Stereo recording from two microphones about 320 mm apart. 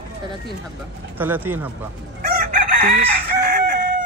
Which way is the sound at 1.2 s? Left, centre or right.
Centre.